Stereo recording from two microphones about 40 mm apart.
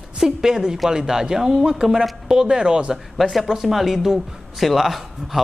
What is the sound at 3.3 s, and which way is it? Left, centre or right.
Speech, centre.